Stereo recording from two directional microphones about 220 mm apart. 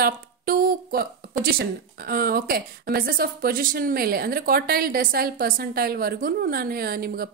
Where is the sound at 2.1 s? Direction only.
45° right (ahead or behind).